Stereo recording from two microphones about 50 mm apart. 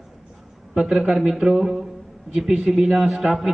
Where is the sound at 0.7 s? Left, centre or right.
Centre.